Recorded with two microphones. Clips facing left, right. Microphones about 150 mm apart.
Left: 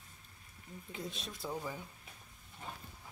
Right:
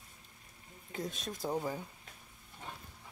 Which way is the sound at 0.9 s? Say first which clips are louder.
Right 5 dB; 45° right (ahead or behind).